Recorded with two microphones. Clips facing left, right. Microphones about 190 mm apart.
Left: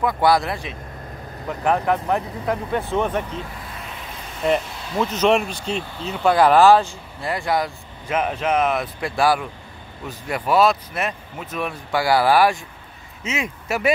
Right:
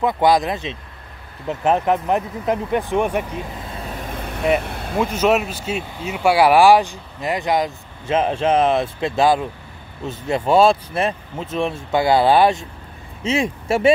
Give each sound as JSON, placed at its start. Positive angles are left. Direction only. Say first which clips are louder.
{"t": 0.0, "sound": "speech", "louder": "right 2 dB", "side_deg": -20}
{"t": 3.7, "sound": "vehicle", "louder": "right 6 dB", "side_deg": -40}
{"t": 4.9, "sound": "speech", "louder": "right 1 dB", "side_deg": -10}